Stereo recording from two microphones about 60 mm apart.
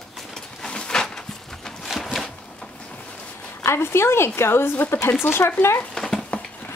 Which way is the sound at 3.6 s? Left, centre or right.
Left.